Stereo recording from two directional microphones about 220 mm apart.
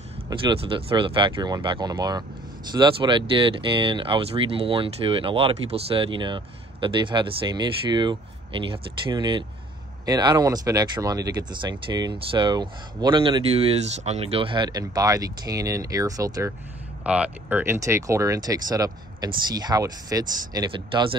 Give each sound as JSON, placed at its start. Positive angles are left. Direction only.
{"t": 0.3, "sound": "speech", "side_deg": -20}
{"t": 17.0, "sound": "speech", "side_deg": -5}